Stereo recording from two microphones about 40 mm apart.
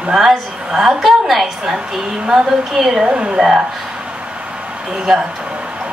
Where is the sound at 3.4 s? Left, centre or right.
Centre.